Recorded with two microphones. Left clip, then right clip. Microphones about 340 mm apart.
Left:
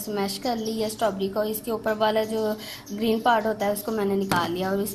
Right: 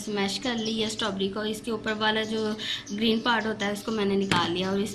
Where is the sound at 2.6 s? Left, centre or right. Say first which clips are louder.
Right 2 dB; left.